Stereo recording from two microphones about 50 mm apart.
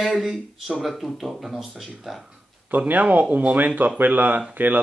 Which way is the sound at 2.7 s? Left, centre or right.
Right.